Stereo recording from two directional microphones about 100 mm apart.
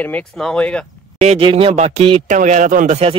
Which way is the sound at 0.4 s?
5° left (ahead or behind).